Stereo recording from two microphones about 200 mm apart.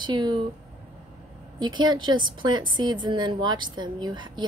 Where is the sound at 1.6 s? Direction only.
20° right (ahead or behind).